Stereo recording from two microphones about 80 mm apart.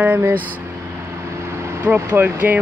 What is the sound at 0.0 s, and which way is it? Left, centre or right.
Speech, right.